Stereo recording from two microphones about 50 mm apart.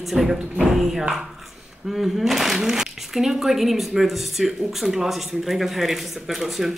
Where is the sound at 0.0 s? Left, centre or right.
Centre.